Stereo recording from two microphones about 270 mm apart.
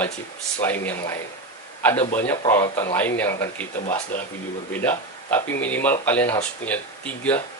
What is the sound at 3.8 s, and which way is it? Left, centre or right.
Speech, left.